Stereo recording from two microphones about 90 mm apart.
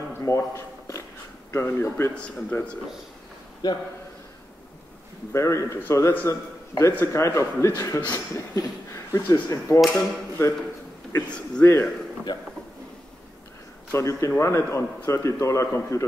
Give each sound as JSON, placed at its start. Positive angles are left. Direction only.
{"t": 0.2, "sound": "a man's voice", "side_deg": 35}
{"t": 3.6, "sound": "a man's voice", "side_deg": 45}
{"t": 5.3, "sound": "a man's voice", "side_deg": 35}
{"t": 11.2, "sound": "a man's voice", "side_deg": 10}
{"t": 11.6, "sound": "a man's voice", "side_deg": 25}
{"t": 12.3, "sound": "a man's voice", "side_deg": 45}
{"t": 13.9, "sound": "a man's voice", "side_deg": 35}